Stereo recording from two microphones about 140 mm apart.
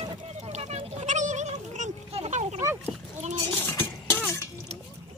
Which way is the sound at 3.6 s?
15° left (ahead or behind).